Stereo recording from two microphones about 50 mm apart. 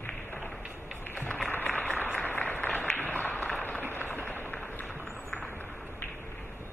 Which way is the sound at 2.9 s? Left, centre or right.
Left.